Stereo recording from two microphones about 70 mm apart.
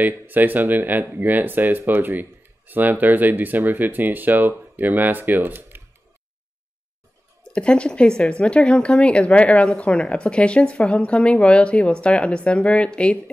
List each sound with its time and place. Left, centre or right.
0.0 s speech: right
7.5 s speech: centre